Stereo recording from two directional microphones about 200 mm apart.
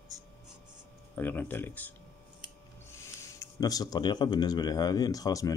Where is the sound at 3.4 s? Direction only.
20° left (ahead or behind).